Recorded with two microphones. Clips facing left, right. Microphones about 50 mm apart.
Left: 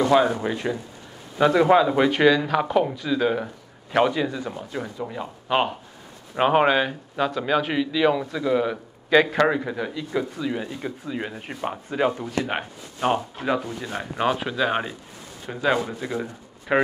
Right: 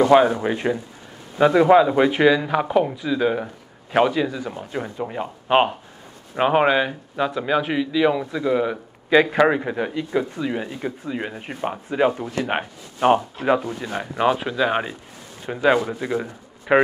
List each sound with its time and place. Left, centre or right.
0.1 s speech: centre
1.4 s speech: centre
4.6 s speech: right
6.3 s speech: centre
9.5 s speech: centre
14.1 s speech: centre
15.4 s speech: centre